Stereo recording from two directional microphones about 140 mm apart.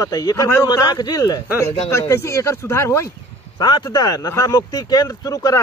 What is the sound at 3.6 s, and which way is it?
Speech, 30° left (ahead or behind).